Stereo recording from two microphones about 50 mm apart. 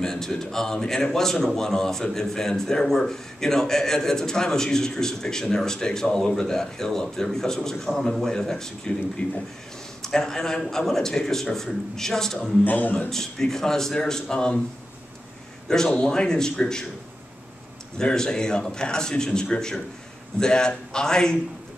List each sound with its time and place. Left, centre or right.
0.0 s a man's voice: centre
9.2 s speech: left
10.0 s a man's voice: centre
12.6 s a man's voice: left
13.1 s a man's voice: centre
15.9 s a man's voice: centre
17.9 s a man's voice: centre